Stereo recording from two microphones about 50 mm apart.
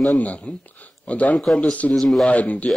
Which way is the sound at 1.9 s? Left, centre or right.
Centre.